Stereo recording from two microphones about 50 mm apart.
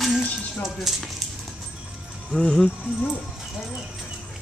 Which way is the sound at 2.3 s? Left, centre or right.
Centre.